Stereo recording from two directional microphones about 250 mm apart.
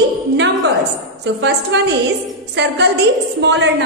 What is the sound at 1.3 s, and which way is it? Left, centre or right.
Speech, right.